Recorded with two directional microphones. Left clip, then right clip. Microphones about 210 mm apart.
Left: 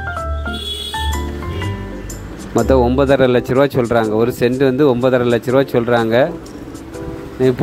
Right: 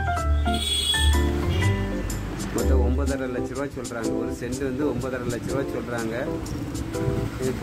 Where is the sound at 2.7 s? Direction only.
40° left (ahead or behind).